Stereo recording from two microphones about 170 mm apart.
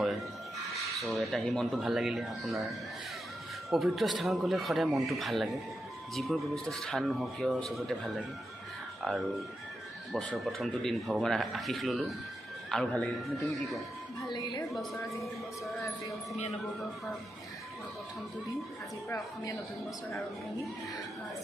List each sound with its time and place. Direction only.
1.0 s speech: centre (ahead or behind)
3.7 s speech: centre (ahead or behind)
10.1 s speech: centre (ahead or behind)
14.3 s a woman's voice: 25° left (ahead or behind)
19.0 s a woman's voice: 20° left (ahead or behind)